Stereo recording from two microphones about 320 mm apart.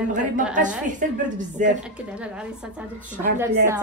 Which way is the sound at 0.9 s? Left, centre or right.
Right.